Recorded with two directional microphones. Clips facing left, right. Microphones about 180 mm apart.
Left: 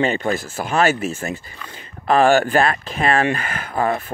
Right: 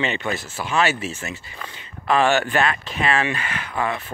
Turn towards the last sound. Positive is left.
turn(degrees=45)  # may be behind; listen again after turning